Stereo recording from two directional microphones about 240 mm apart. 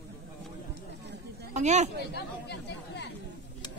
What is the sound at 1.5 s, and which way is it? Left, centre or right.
Speech, right.